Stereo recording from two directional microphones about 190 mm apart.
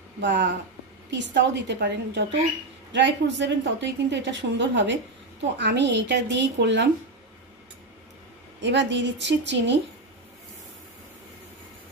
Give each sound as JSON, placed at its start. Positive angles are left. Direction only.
{"t": 0.2, "sound": "a woman's voice", "side_deg": -65}
{"t": 8.5, "sound": "a woman's voice", "side_deg": -70}